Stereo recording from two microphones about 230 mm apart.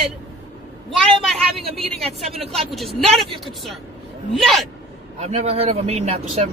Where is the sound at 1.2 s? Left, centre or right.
Centre.